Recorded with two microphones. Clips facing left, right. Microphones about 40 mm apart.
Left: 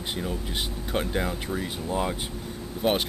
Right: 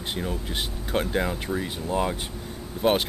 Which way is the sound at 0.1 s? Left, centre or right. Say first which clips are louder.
Right 1 dB; centre.